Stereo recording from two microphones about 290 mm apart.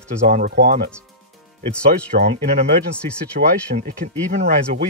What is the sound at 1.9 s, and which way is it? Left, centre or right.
Speech, right.